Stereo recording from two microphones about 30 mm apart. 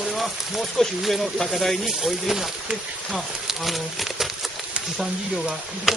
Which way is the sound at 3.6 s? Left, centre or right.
Centre.